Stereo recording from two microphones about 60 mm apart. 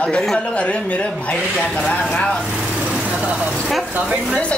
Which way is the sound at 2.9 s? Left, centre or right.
Right.